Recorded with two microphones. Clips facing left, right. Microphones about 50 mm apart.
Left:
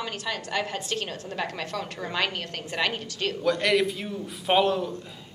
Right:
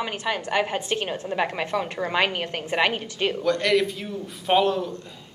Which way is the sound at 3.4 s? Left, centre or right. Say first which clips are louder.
Right 1 dB; centre.